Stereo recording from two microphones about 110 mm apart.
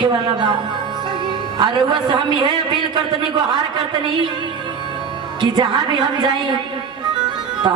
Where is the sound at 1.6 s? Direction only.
45° right (ahead or behind).